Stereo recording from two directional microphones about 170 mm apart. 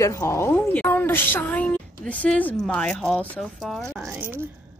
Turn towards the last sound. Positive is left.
turn(degrees=0)  # may be behind; listen again after turning